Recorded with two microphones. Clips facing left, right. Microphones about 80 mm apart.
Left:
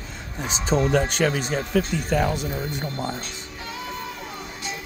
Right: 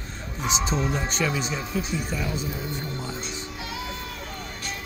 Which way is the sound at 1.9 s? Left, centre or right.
Left.